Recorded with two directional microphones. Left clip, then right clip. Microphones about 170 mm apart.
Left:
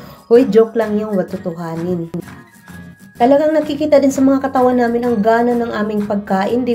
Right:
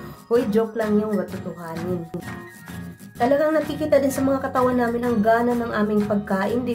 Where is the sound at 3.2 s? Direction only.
10° left (ahead or behind).